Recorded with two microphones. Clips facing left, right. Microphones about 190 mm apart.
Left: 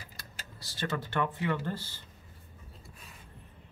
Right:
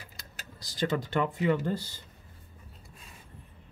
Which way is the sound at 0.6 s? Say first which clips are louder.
Right 5 dB; 15° right (ahead or behind).